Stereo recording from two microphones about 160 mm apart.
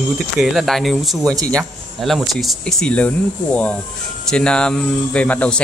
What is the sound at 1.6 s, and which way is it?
Speech, centre (ahead or behind).